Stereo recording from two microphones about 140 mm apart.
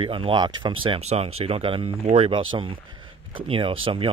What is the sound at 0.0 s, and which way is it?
Speech, 40° right (ahead or behind).